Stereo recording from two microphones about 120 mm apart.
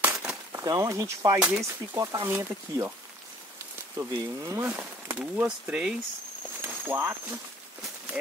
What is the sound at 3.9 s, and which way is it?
Speech, 25° right (ahead or behind).